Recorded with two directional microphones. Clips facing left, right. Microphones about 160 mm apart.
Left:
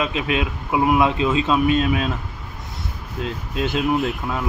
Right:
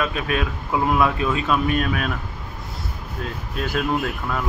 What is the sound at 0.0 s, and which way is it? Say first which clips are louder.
Speech: left 1 dB; 20° left (ahead or behind).